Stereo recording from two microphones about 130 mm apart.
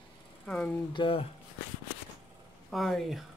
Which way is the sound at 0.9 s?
40° left (ahead or behind).